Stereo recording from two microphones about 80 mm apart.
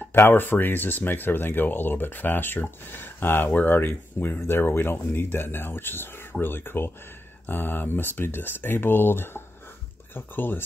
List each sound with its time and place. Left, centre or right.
0.1 s speech: left